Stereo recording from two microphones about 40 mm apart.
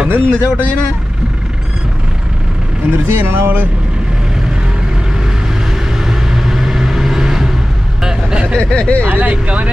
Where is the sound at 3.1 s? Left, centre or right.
Right.